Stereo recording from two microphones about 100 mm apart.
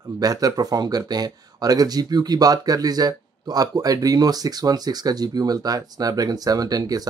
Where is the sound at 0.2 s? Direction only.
40° right (ahead or behind).